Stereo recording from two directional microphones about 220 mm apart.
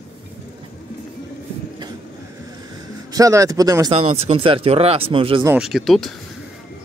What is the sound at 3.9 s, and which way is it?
Speech, 30° right (ahead or behind).